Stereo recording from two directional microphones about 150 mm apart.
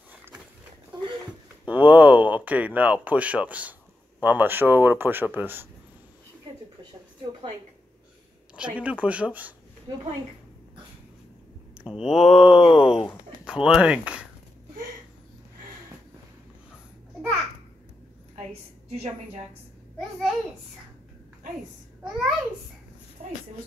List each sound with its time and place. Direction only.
0.1 s dog: 10° right (ahead or behind)
1.7 s speech: 10° right (ahead or behind)
8.7 s speech: 10° right (ahead or behind)
11.8 s speech: 5° right (ahead or behind)
18.3 s a sound: 40° right (ahead or behind)
20.0 s speech: centre (ahead or behind)
23.2 s a sound: 50° right (ahead or behind)